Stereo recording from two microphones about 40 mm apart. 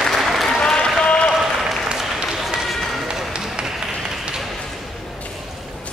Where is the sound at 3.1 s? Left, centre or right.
Centre.